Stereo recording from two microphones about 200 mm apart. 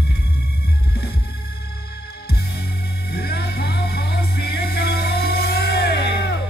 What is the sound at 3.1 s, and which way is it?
Music, 55° left (ahead or behind).